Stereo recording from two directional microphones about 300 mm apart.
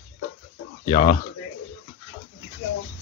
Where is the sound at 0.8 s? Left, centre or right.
Centre.